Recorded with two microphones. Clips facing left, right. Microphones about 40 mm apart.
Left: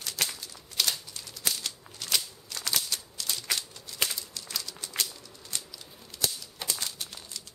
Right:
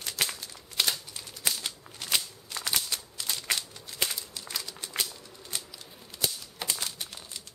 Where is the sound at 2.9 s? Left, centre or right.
Centre.